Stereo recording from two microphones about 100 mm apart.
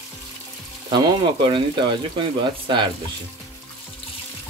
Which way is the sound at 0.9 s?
50° right (ahead or behind).